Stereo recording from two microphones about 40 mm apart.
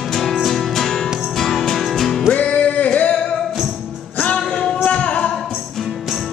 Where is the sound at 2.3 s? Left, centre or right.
Left.